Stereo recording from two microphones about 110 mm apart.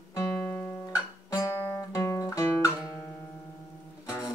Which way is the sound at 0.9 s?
30° left (ahead or behind).